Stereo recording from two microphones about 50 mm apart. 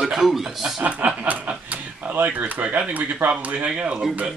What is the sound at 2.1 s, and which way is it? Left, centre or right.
Speech, right.